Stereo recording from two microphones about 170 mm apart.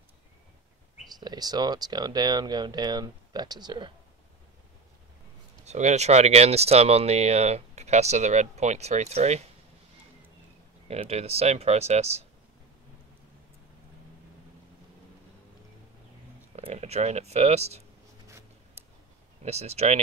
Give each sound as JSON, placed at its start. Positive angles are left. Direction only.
{"t": 1.2, "sound": "speech", "side_deg": -25}
{"t": 5.7, "sound": "speech", "side_deg": -40}
{"t": 10.9, "sound": "speech", "side_deg": -35}
{"t": 16.5, "sound": "speech", "side_deg": -40}
{"t": 19.4, "sound": "speech", "side_deg": -40}